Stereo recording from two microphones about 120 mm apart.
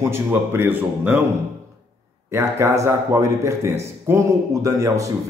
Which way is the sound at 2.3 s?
25° right (ahead or behind).